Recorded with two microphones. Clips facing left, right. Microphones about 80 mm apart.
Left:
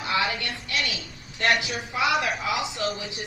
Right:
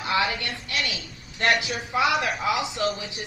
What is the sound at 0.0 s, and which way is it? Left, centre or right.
A man's voice, right.